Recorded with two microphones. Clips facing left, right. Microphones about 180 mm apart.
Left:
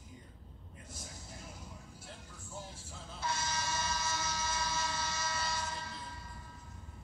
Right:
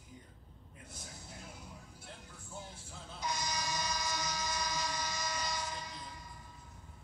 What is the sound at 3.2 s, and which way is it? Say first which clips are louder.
Vehicle: left 1 dB; 15° right (ahead or behind).